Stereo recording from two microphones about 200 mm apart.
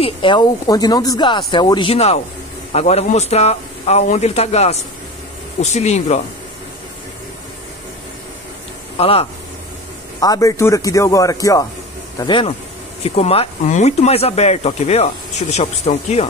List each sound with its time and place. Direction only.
0.0 s speech: 25° left (ahead or behind)
8.9 s speech: 30° left (ahead or behind)
10.2 s speech: 15° left (ahead or behind); by 16.3 s 30° left (ahead or behind)